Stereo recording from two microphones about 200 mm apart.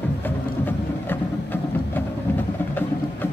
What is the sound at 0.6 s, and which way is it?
Music, 10° left (ahead or behind).